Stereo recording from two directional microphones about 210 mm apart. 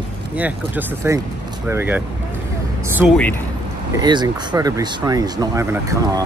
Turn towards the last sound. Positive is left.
turn(degrees=-15)  # may be behind; listen again after turning